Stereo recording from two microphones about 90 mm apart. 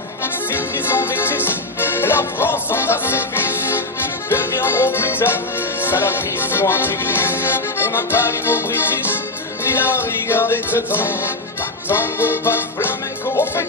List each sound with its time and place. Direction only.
0.2 s music: 25° left (ahead or behind)